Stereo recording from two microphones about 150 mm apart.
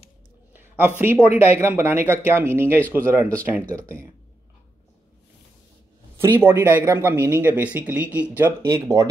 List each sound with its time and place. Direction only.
0.5 s speech: 15° right (ahead or behind)
3.6 s speech: 10° left (ahead or behind)
6.1 s speech: 15° right (ahead or behind)